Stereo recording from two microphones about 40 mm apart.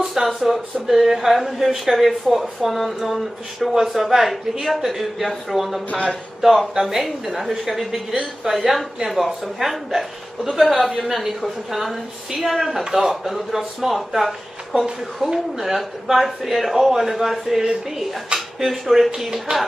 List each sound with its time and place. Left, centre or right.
0.0 s speech: centre
5.9 s speech: left
6.4 s speech: centre
17.6 s speech: centre
18.6 s speech: centre
19.5 s music: right